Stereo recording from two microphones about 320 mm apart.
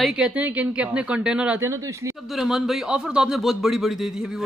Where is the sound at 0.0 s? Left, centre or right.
Centre.